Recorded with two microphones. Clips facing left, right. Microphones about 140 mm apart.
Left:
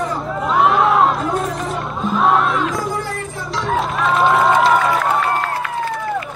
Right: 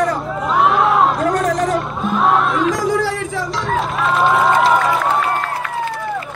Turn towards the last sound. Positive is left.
turn(degrees=0)  # may be behind; listen again after turning